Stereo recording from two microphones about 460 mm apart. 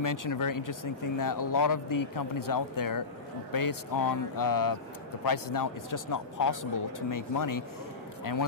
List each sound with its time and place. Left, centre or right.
0.0 s speech: left